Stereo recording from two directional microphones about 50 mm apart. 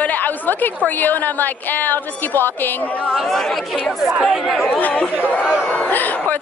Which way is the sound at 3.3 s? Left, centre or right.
Centre.